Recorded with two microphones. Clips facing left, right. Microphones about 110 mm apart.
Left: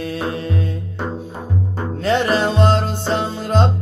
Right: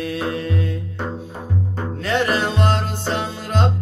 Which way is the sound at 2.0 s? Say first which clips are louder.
Left 3 dB; 30° left (ahead or behind).